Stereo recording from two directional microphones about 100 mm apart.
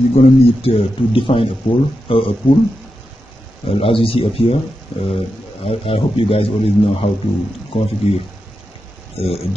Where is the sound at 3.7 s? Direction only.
65° left (ahead or behind).